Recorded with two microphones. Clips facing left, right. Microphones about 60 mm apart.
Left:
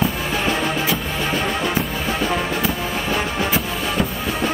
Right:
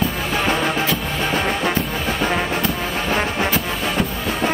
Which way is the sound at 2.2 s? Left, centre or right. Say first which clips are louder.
Right 2 dB; right.